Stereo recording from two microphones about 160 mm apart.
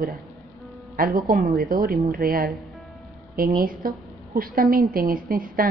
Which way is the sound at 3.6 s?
65° right (ahead or behind).